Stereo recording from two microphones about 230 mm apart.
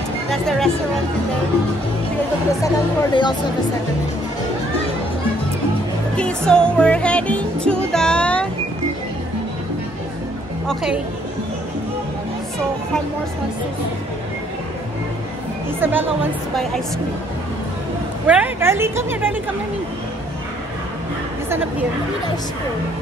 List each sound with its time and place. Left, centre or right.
0.3 s speech: centre
2.6 s speech: centre
6.1 s music: centre
10.7 s speech: centre
15.8 s speech: centre
18.2 s speech: centre